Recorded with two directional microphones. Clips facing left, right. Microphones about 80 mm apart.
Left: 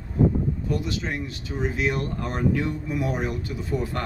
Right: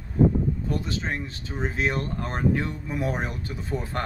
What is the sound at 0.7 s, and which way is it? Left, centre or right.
Speech, right.